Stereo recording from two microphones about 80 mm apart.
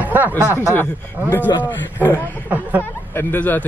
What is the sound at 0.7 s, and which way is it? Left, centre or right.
Speech, left.